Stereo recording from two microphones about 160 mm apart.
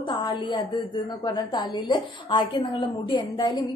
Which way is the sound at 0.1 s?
30° left (ahead or behind).